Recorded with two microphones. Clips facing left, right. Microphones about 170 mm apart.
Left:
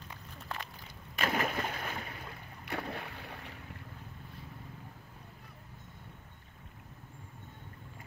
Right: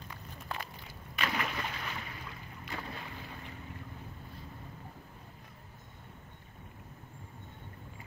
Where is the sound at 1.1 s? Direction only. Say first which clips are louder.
Left 3 dB; 45° left (ahead or behind).